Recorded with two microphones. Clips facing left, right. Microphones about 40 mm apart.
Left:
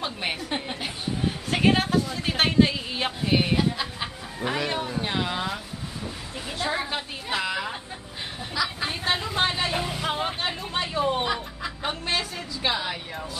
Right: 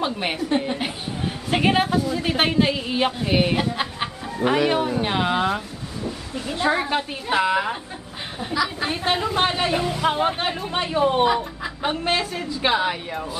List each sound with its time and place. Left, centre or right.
0.0 s a man's voice: centre
1.5 s a man's voice: centre
3.5 s a woman's voice: right
8.4 s a man's voice: centre
9.8 s speech: centre
10.0 s a man's voice: centre